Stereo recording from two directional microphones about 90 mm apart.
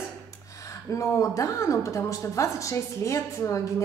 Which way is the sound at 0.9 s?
35° left (ahead or behind).